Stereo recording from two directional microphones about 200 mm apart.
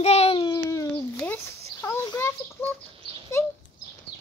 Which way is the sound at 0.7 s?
15° left (ahead or behind).